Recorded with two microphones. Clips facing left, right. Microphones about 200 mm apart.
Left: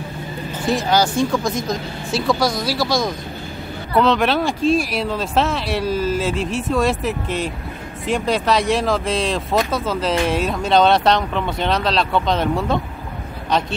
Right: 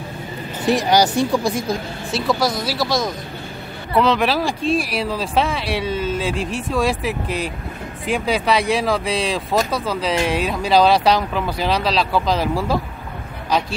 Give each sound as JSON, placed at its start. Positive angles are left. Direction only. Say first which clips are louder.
{"t": 0.7, "sound": "speech", "louder": "right 2 dB", "side_deg": -15}
{"t": 1.7, "sound": "speech", "louder": "even", "side_deg": 0}